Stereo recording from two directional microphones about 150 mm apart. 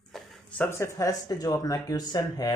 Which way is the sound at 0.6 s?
15° left (ahead or behind).